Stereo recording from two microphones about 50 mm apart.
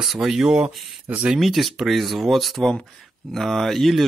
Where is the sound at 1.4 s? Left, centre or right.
Centre.